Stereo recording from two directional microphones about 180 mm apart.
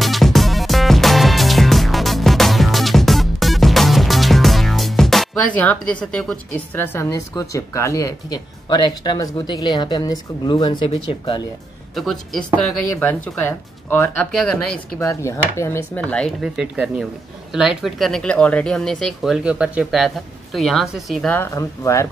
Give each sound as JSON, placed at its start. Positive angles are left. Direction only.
{"t": 0.0, "sound": "music", "side_deg": 0}
{"t": 11.9, "sound": "speech", "side_deg": 0}
{"t": 15.0, "sound": "speech", "side_deg": 15}
{"t": 21.4, "sound": "speech", "side_deg": 15}